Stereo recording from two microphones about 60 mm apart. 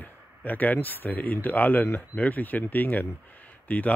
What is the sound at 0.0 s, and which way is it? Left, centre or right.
Speech, left.